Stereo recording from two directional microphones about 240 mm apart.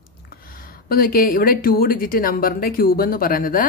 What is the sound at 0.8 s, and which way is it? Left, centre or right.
Speech, left.